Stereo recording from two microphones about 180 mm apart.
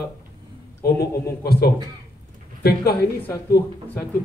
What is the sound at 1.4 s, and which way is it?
A man's voice, 60° left (ahead or behind).